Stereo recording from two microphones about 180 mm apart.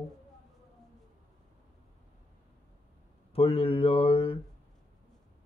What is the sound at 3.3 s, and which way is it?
Speech, 30° left (ahead or behind).